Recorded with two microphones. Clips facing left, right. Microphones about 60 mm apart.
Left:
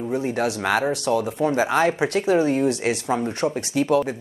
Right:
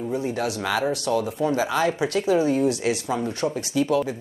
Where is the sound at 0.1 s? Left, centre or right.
Left.